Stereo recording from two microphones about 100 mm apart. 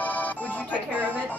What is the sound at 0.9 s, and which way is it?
Speech, 15° right (ahead or behind).